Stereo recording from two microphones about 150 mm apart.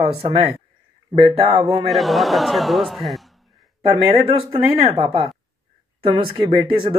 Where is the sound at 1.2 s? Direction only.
40° right (ahead or behind).